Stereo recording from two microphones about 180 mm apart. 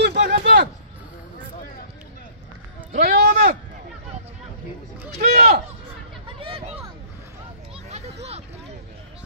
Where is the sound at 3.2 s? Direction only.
45° right (ahead or behind).